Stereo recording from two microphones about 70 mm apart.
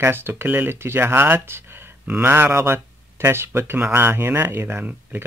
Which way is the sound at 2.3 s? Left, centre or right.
Right.